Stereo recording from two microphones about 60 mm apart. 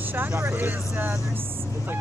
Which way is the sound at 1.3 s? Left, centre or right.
Right.